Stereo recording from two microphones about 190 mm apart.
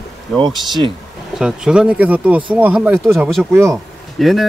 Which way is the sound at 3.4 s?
15° right (ahead or behind).